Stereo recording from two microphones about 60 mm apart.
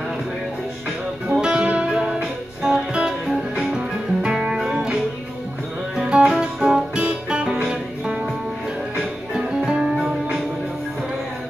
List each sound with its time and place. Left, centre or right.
1.3 s music: centre
5.9 s music: centre
9.3 s music: centre